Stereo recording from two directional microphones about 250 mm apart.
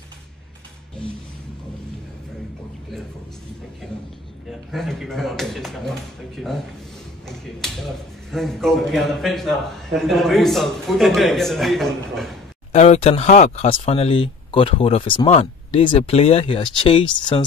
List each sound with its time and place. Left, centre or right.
3.8 s a man's voice: centre
12.7 s speech: left